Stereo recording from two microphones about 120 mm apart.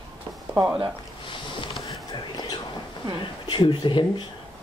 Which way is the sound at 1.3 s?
45° left (ahead or behind).